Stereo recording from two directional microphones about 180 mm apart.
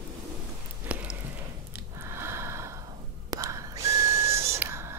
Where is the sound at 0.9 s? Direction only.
5° right (ahead or behind).